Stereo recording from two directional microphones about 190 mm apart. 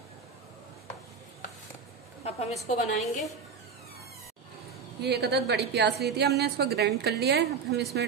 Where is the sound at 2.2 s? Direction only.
35° left (ahead or behind).